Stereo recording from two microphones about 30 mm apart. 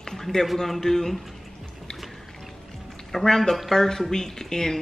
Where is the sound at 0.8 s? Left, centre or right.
Centre.